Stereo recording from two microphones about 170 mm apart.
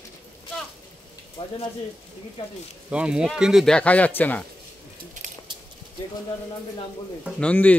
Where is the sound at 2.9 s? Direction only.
5° right (ahead or behind); by 4.5 s 10° left (ahead or behind).